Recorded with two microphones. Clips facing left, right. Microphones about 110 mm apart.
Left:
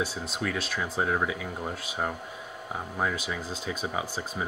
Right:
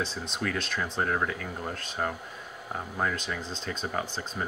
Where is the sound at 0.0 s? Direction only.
5° left (ahead or behind).